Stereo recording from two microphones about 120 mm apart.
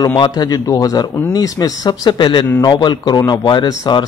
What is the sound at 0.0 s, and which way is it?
A man's voice, 35° left (ahead or behind).